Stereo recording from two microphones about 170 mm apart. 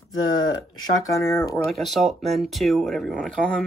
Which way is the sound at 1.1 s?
15° left (ahead or behind).